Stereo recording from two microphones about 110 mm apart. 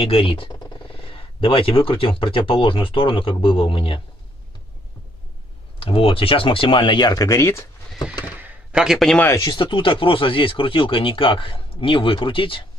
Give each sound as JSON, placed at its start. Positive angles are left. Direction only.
{"t": 0.0, "sound": "speech", "side_deg": 55}
{"t": 5.8, "sound": "speech", "side_deg": 60}
{"t": 8.0, "sound": "a sound", "side_deg": -10}
{"t": 8.8, "sound": "a man's voice", "side_deg": 0}
{"t": 9.4, "sound": "speech", "side_deg": 45}